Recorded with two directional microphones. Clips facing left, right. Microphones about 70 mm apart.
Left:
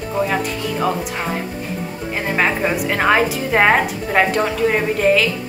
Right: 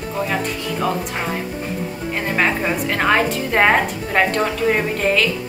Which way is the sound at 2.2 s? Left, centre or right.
Centre.